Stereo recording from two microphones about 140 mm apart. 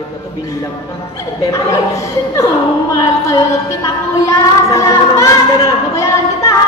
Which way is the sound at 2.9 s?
25° left (ahead or behind).